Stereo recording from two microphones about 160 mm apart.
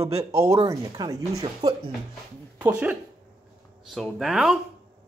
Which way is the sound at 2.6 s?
10° right (ahead or behind).